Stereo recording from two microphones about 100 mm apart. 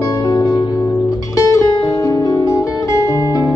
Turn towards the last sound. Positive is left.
turn(degrees=35)  # may be behind; listen again after turning